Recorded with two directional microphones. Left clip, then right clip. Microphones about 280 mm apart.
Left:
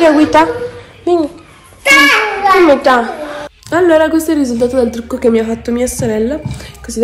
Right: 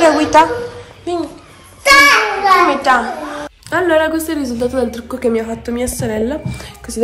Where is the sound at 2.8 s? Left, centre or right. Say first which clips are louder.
Left 3 dB; centre.